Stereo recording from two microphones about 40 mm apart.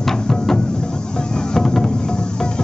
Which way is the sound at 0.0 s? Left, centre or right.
Centre.